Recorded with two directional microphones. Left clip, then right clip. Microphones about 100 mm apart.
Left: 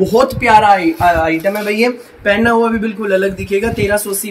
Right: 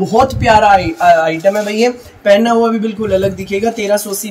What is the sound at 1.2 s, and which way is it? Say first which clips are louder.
Speech: right 2 dB; 40° right (ahead or behind).